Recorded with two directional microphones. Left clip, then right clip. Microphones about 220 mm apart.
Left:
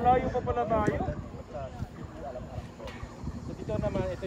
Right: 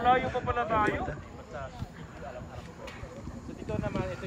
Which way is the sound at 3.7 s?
45° left (ahead or behind).